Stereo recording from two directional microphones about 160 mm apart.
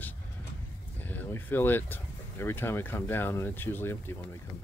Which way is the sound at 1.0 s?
10° left (ahead or behind).